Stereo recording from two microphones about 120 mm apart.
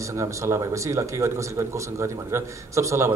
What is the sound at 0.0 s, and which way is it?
A man's voice, 25° right (ahead or behind).